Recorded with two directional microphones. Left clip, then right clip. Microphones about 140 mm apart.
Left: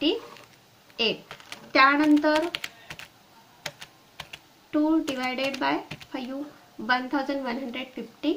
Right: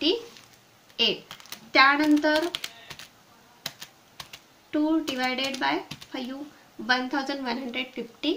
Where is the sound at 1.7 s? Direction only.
30° left (ahead or behind).